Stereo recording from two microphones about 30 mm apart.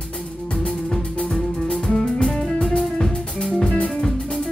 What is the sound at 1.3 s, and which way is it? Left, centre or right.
Music, centre.